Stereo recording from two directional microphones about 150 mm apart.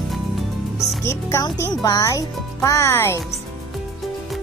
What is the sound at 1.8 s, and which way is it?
Speech, 25° left (ahead or behind).